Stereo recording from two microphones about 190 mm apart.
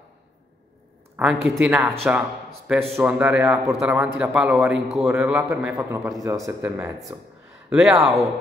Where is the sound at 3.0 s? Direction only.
10° right (ahead or behind).